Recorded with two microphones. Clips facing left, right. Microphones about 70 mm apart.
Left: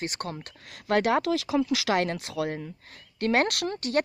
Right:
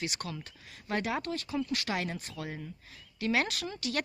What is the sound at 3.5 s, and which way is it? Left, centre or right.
Speech, left.